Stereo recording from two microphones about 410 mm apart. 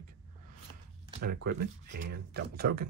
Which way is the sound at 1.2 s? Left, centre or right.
Right.